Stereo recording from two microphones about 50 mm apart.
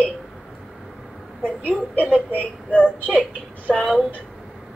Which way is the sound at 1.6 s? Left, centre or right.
Left.